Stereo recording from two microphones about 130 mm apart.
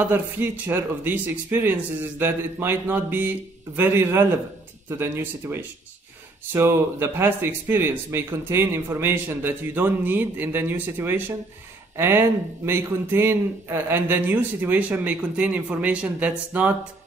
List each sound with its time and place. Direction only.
0.0 s speech: 15° right (ahead or behind)